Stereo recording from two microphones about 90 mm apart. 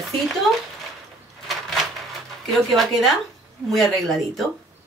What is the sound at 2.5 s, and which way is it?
Speech, centre (ahead or behind).